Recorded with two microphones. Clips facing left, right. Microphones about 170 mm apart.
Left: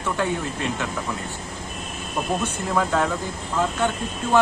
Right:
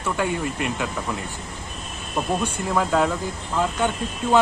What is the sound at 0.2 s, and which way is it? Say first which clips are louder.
Speech: right 1 dB; 10° right (ahead or behind).